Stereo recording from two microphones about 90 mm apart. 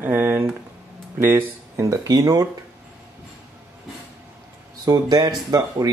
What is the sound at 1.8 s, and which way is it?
Speech, 40° right (ahead or behind).